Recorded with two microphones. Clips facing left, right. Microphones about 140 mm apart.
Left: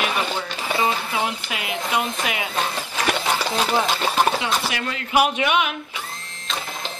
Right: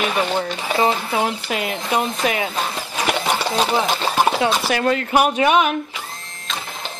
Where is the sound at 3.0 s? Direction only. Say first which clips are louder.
Right 2 dB; 15° right (ahead or behind).